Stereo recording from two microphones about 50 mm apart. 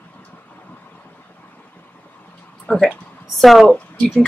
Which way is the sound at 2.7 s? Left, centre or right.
Left.